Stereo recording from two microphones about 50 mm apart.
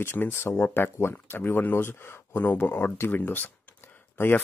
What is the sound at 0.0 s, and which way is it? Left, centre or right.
Speech, left.